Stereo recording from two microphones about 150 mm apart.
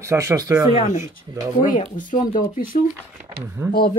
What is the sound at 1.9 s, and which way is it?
Speech, 60° left (ahead or behind).